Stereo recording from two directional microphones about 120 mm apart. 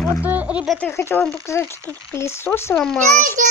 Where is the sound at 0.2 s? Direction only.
15° right (ahead or behind).